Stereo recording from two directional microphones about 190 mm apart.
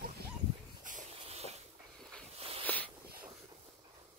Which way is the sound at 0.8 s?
40° right (ahead or behind).